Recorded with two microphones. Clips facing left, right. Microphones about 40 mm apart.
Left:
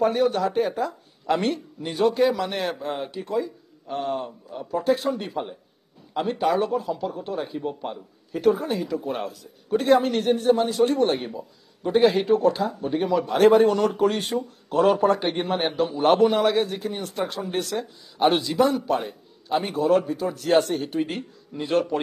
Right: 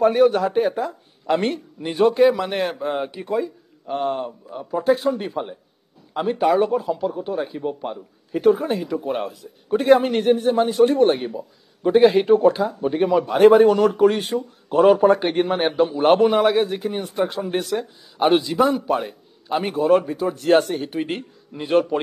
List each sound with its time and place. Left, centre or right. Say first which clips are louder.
0.2 s speech: right 5 dB; centre
4.6 s speech: right 4 dB; centre
8.3 s speech: right 4 dB; centre
11.1 s speech: right 3 dB; centre
12.2 s speech: right 5 dB; centre
12.5 s speech: right 4 dB; centre; by 16.3 s right
16.3 s a man's voice: right 4 dB; centre
19.9 s speech: right 4 dB; right
20.6 s speech: right 1 dB; centre
21.0 s speech: right 1 dB; right